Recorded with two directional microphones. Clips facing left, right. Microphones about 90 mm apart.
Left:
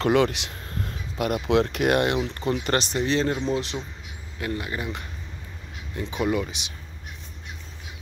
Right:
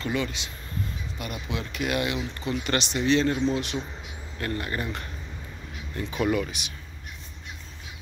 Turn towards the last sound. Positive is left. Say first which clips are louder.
# even
turn(degrees=20)  # may be behind; listen again after turning